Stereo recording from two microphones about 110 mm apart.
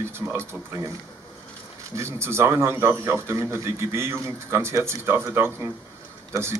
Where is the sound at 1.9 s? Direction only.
25° right (ahead or behind).